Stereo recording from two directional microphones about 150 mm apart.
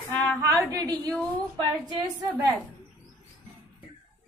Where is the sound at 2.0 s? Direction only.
25° right (ahead or behind).